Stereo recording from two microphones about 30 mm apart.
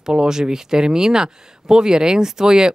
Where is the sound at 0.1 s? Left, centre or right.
Right.